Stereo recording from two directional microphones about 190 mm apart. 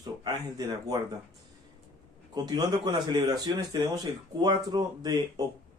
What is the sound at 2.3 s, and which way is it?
Speech, 20° right (ahead or behind).